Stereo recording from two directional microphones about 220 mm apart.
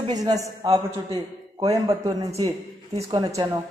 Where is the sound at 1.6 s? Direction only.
20° right (ahead or behind).